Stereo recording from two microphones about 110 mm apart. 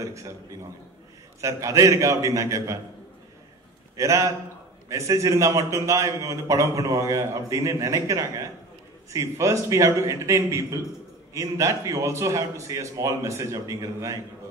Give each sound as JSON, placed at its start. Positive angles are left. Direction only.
{"t": 0.0, "sound": "a man's voice", "side_deg": -30}
{"t": 1.4, "sound": "a man's voice", "side_deg": -30}
{"t": 3.9, "sound": "a man's voice", "side_deg": -30}